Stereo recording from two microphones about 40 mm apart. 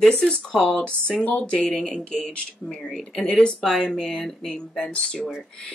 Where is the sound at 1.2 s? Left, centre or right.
Left.